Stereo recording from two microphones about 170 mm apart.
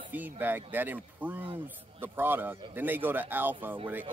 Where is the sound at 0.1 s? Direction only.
10° right (ahead or behind).